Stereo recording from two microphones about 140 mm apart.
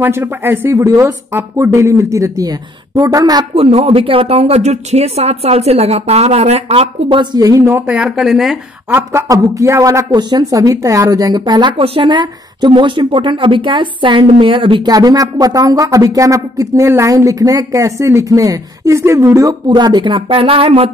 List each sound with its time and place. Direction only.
0.0 s speech: 15° right (ahead or behind)
3.5 s speech: 45° right (ahead or behind); by 8.5 s 5° right (ahead or behind)
8.9 s speech: 20° right (ahead or behind); by 20.9 s 40° right (ahead or behind)